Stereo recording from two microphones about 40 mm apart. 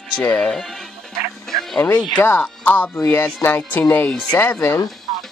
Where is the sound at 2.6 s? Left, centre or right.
Left.